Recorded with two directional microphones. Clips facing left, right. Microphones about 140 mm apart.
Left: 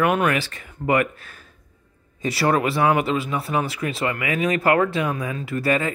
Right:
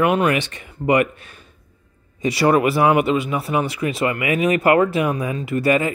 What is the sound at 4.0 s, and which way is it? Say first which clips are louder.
Speech: right 4 dB; 20° right (ahead or behind).